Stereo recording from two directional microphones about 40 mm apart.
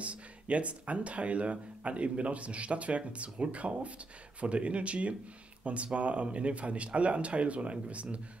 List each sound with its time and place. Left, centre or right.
0.0 s speech: right